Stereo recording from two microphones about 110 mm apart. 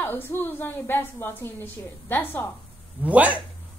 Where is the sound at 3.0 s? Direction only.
15° right (ahead or behind).